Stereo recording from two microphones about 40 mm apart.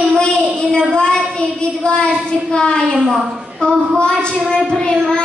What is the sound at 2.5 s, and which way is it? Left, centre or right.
A woman's voice, left.